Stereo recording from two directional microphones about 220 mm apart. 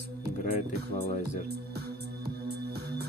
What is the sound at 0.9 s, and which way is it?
Speech, 30° left (ahead or behind).